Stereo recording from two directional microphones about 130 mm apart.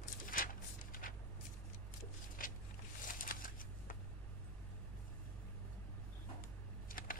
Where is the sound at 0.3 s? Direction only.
90° left.